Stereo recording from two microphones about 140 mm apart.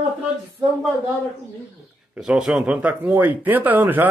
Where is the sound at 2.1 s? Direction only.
5° right (ahead or behind).